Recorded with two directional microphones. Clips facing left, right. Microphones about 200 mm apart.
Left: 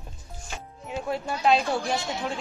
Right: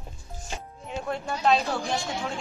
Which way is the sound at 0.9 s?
5° left (ahead or behind).